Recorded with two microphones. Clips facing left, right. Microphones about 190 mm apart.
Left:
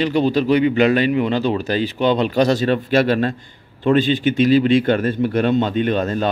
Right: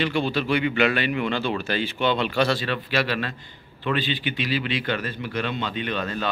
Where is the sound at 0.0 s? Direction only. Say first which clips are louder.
Left 7 dB; 40° left (ahead or behind).